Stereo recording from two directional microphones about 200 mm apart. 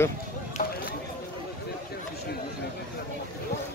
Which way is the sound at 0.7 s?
50° left (ahead or behind).